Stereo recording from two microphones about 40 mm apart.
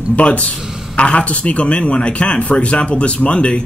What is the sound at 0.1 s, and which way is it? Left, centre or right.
Speech, left.